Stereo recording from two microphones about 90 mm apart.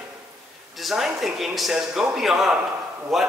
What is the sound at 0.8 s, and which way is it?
A man's voice, 5° right (ahead or behind).